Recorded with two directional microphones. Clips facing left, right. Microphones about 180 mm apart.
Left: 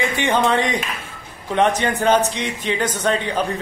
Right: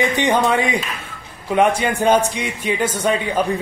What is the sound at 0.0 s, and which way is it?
Speech, 15° right (ahead or behind).